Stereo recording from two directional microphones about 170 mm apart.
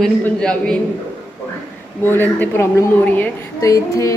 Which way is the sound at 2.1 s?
15° left (ahead or behind).